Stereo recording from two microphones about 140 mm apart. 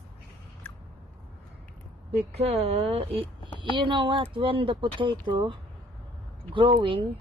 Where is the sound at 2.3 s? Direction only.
50° right (ahead or behind).